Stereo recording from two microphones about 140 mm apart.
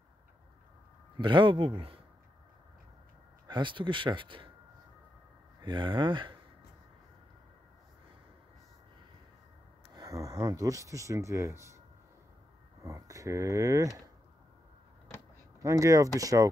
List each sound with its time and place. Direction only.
1.1 s speech: 35° right (ahead or behind)
3.4 s speech: 35° right (ahead or behind)
5.6 s speech: 35° right (ahead or behind)
9.9 s speech: 25° right (ahead or behind)
12.8 s speech: 25° right (ahead or behind)
15.6 s speech: 25° right (ahead or behind)